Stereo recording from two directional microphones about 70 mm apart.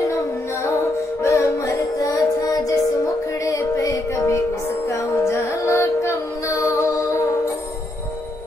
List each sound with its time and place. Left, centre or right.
1.2 s music: left